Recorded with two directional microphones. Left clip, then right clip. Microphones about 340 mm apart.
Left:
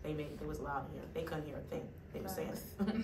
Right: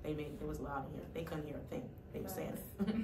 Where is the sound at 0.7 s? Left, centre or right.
Centre.